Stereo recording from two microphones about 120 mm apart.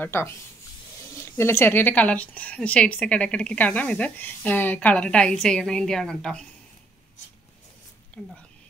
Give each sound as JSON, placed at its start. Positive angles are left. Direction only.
{"t": 0.0, "sound": "a woman's voice", "side_deg": 20}
{"t": 8.1, "sound": "speech", "side_deg": 10}